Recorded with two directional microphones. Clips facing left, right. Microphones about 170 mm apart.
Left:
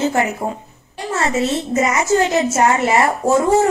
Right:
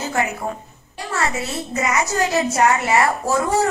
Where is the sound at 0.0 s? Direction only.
25° left (ahead or behind).